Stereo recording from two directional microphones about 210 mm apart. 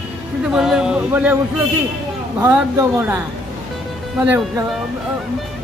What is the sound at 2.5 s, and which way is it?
A man's voice, 10° right (ahead or behind).